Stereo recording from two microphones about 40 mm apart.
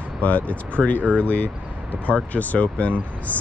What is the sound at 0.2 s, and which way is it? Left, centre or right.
Speech, left.